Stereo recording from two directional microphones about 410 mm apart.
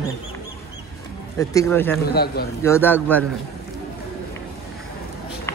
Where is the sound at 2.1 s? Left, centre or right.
Left.